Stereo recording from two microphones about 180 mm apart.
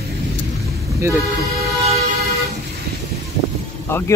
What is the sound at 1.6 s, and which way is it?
Vehicle, 35° right (ahead or behind).